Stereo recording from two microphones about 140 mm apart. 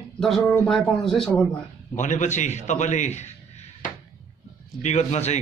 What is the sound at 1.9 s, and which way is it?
A man's voice, 60° left (ahead or behind).